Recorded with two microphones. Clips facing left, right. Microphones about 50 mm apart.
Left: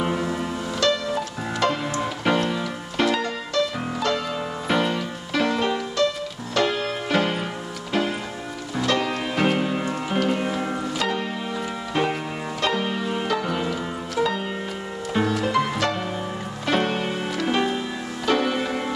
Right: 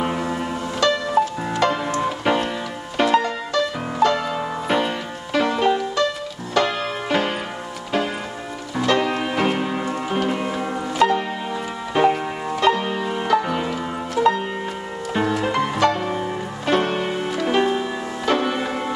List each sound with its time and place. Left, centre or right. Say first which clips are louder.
0.0 s music: right 1 dB; centre
1.9 s music: right 3 dB; centre
4.6 s music: even; centre
8.7 s music: right 4 dB; centre
9.4 s music: left 2 dB; centre